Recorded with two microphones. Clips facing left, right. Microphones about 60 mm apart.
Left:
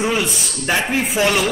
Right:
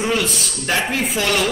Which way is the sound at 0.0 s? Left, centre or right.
Centre.